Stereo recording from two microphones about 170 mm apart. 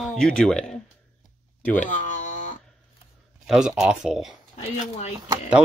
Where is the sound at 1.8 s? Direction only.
45° left (ahead or behind).